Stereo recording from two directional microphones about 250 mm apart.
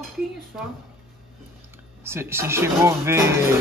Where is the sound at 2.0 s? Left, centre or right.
Centre.